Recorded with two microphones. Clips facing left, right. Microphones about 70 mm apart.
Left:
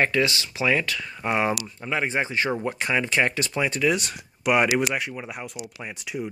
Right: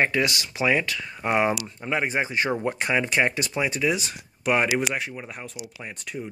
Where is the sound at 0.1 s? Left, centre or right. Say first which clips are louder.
Left 1 dB; right.